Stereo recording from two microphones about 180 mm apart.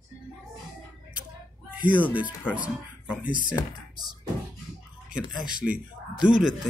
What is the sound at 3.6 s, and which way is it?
Speech, 20° left (ahead or behind).